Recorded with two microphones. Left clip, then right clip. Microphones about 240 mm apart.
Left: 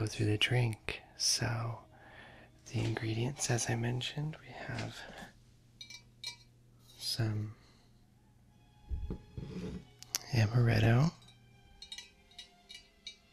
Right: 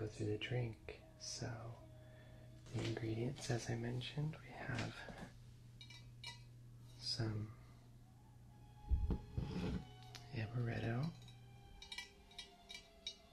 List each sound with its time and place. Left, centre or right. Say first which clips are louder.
0.0 s speech: left 11 dB; left
2.9 s speech: left 6 dB; left
5.8 s chink: left 9 dB; centre
7.0 s speech: left 6 dB; left
9.0 s a sound: left 2 dB; centre
9.9 s speech: left 14 dB; left
11.9 s a sound: left 2 dB; centre